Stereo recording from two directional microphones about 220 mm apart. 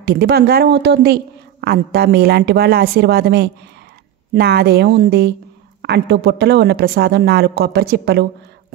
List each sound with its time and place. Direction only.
0.0 s a woman's voice: 45° right (ahead or behind)